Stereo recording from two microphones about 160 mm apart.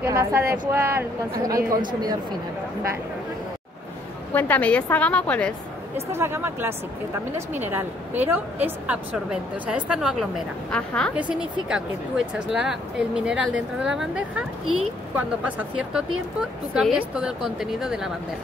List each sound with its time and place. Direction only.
0.0 s a woman's voice: 15° right (ahead or behind)
4.3 s a woman's voice: 10° left (ahead or behind)
6.1 s a woman's voice: 15° right (ahead or behind)
10.7 s a woman's voice: 5° left (ahead or behind)
11.1 s speech: 5° right (ahead or behind)